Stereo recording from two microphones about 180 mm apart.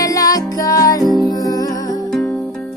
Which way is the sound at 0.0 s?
20° left (ahead or behind).